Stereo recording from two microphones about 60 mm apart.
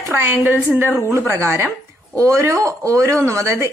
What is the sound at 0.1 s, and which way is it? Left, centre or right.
Speech, right.